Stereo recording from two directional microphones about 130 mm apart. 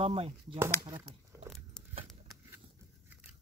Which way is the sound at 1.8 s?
5° left (ahead or behind).